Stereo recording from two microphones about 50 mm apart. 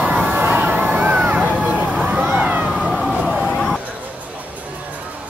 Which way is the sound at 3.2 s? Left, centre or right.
Centre.